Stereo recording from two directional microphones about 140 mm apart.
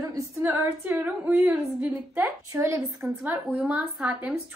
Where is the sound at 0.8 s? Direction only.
10° right (ahead or behind).